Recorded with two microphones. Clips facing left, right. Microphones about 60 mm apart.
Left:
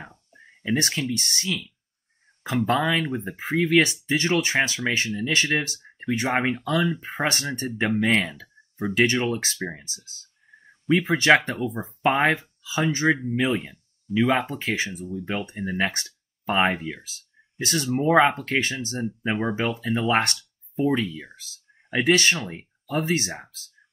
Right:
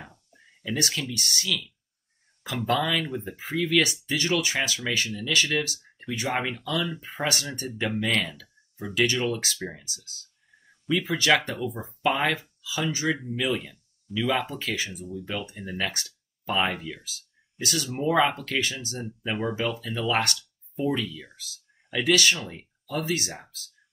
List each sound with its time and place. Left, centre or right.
0.0 s speech: left